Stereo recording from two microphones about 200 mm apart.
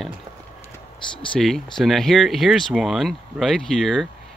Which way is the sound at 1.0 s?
25° left (ahead or behind).